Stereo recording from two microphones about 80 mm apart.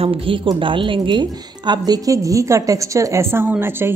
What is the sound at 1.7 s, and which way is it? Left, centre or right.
Speech, right.